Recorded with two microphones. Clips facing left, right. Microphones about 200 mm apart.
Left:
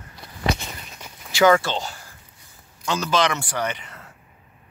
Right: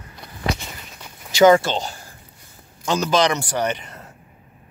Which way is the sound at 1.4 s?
20° right (ahead or behind).